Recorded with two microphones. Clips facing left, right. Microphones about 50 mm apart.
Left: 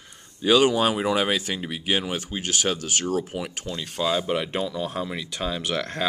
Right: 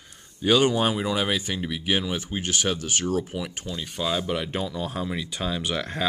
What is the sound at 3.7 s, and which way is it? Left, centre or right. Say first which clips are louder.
Speech: left 1 dB; left.